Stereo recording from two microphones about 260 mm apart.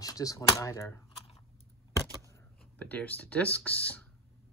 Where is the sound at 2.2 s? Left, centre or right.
Centre.